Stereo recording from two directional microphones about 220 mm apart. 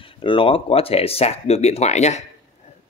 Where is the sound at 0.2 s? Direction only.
25° left (ahead or behind).